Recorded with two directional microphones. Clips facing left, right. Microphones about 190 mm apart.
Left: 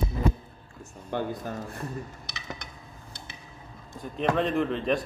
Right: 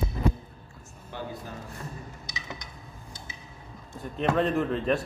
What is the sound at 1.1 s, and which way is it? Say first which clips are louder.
Dishes: left 8 dB; 55° left (ahead or behind).